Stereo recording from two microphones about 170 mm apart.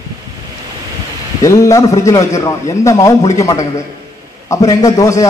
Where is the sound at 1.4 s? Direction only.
20° left (ahead or behind).